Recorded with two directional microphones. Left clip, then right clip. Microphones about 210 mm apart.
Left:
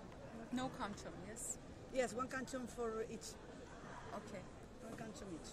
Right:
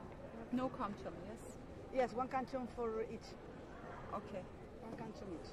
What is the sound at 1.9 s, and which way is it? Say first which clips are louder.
Speech: right 3 dB; 45° left (ahead or behind).